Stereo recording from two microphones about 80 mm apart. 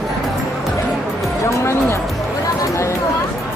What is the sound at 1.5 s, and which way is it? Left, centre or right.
Music, left.